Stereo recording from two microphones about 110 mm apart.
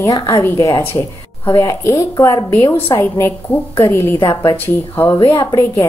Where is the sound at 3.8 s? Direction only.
20° left (ahead or behind).